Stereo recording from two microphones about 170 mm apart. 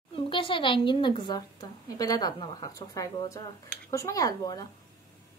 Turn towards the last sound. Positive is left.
turn(degrees=20)  # may be behind; listen again after turning